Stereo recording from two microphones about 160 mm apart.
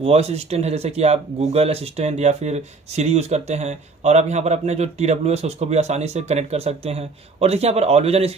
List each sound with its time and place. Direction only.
0.0 s speech: 40° right (ahead or behind)